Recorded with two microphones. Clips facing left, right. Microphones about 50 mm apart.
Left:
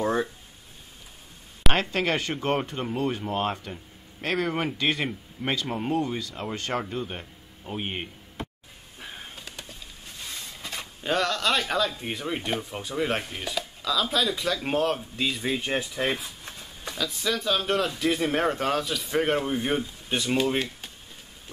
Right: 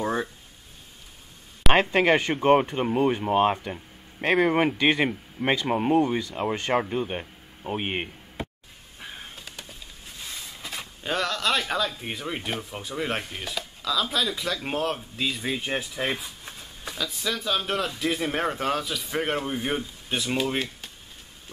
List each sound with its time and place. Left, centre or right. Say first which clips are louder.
0.0 s a sound: left 2 dB; centre
1.7 s speech: right 6 dB; right
9.0 s bird: even; centre